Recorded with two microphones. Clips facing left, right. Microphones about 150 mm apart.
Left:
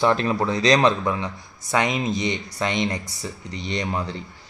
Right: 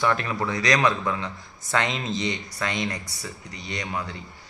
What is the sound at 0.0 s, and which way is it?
Speech, 30° left (ahead or behind).